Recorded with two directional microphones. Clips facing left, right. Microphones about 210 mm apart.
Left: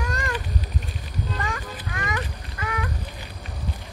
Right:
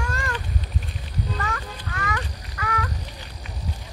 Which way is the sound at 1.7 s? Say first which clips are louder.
Even; 15° left (ahead or behind).